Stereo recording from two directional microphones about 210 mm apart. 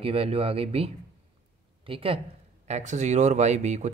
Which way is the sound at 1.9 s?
25° right (ahead or behind).